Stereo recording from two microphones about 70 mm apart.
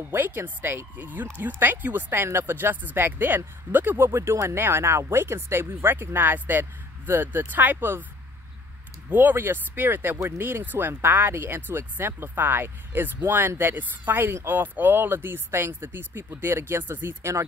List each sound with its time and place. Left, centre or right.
0.1 s speech: right
9.1 s speech: right
10.4 s speech: right